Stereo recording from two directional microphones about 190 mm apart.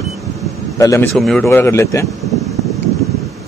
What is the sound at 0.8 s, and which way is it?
Speech, 15° left (ahead or behind).